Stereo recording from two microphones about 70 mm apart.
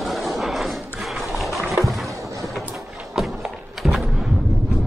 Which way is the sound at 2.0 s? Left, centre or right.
Right.